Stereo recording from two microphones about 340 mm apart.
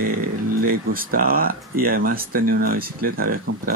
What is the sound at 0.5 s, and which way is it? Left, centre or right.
Speech, right.